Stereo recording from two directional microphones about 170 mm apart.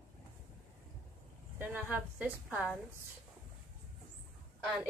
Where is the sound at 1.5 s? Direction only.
10° right (ahead or behind).